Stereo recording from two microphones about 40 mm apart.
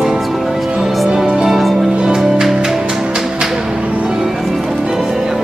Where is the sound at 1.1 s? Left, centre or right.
Centre.